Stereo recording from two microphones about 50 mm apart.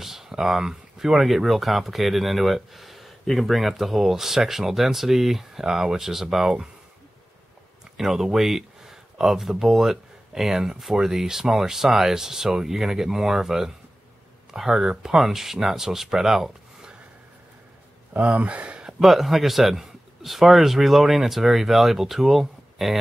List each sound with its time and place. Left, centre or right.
0.0 s speech: centre
8.0 s speech: centre
18.1 s speech: right
18.9 s speech: centre